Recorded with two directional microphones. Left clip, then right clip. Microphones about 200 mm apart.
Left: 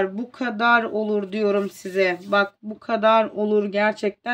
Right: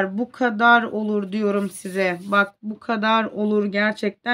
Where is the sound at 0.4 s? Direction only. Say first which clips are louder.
Right 3 dB; 30° right (ahead or behind).